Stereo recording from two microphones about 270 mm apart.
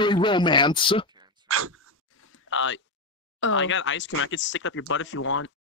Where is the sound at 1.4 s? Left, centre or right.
Right.